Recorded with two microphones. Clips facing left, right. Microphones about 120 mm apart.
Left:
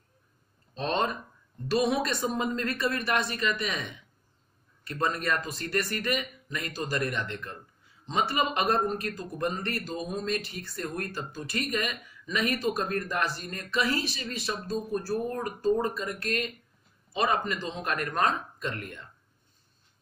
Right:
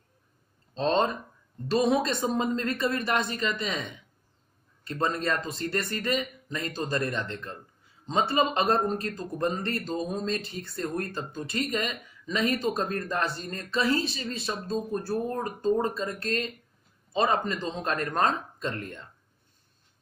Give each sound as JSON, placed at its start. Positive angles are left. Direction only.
{"t": 0.7, "sound": "a man's voice", "side_deg": -25}